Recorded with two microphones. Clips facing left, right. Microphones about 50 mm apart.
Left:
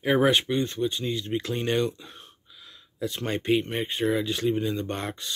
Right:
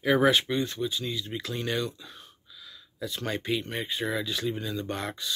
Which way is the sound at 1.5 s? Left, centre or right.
Left.